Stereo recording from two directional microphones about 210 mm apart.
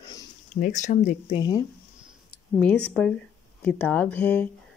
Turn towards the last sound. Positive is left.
turn(degrees=10)  # may be behind; listen again after turning